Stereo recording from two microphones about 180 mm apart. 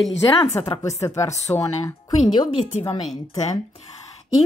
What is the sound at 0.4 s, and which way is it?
Speech, 30° left (ahead or behind).